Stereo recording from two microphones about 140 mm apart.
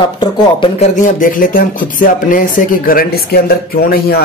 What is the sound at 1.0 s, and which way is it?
Speech, 70° left (ahead or behind).